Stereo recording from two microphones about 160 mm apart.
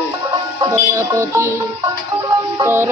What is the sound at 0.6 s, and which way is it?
Music, 15° right (ahead or behind).